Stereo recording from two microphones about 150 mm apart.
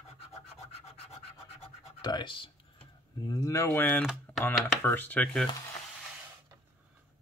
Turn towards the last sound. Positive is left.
turn(degrees=10)  # may be behind; listen again after turning